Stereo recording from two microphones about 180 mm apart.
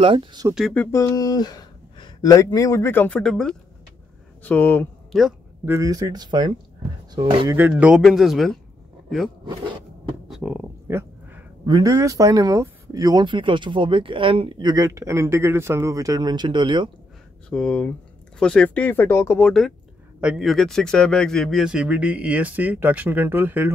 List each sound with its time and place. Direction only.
0.0 s speech: 30° right (ahead or behind)
0.6 s speech: 5° left (ahead or behind)
0.9 s speech: 20° left (ahead or behind)
5.7 s speech: 20° right (ahead or behind)
7.7 s speech: centre (ahead or behind)
10.2 s a sound: 5° right (ahead or behind)
11.6 s speech: 20° right (ahead or behind)
17.5 s a man's voice: 5° left (ahead or behind); by 23.7 s 10° right (ahead or behind)